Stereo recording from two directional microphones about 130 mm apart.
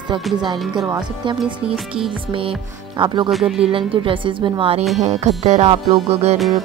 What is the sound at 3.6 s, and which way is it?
Speech, 45° right (ahead or behind).